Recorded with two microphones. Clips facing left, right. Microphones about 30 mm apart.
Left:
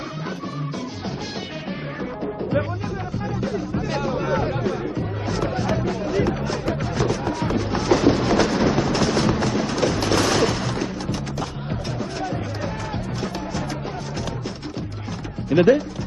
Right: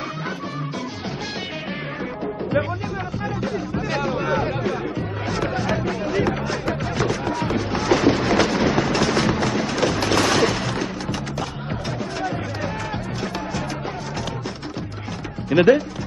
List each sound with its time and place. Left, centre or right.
3.5 s music: centre
7.0 s a sound: centre
15.5 s speech: right